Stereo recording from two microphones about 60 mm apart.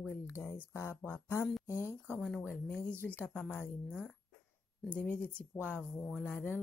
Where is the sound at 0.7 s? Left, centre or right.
Left.